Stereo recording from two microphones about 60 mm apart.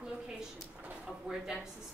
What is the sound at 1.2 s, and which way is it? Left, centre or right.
Speech, centre.